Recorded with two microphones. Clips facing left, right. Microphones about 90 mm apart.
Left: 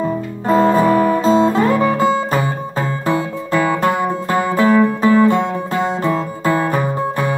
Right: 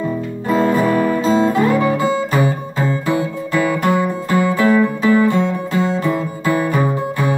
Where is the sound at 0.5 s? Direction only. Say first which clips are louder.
Left 3 dB; 35° left (ahead or behind).